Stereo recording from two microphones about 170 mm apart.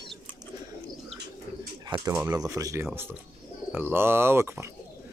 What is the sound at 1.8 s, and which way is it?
Speech, 20° right (ahead or behind).